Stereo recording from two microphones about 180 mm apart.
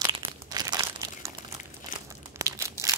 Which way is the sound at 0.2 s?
20° right (ahead or behind).